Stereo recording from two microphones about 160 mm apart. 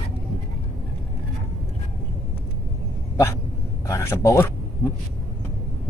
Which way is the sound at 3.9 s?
20° left (ahead or behind).